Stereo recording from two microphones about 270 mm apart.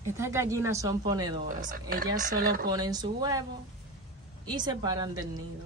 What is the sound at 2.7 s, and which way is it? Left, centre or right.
Speech, centre.